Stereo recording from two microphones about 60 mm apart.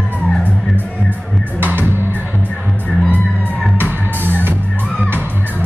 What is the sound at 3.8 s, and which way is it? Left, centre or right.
Music, right.